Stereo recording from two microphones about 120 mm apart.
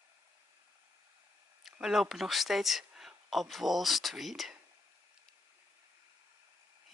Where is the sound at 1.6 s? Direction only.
Centre (ahead or behind).